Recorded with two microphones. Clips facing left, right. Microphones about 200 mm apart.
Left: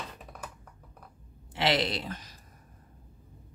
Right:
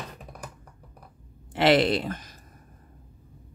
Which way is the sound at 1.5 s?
55° right (ahead or behind).